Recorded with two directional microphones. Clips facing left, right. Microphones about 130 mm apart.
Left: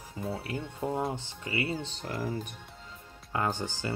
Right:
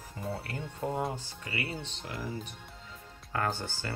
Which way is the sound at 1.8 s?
45° left (ahead or behind).